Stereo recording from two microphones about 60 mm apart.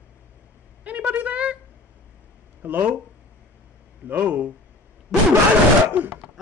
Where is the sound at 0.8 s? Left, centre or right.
Right.